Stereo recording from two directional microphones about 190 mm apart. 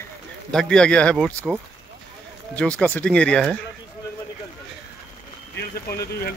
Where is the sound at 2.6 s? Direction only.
5° left (ahead or behind).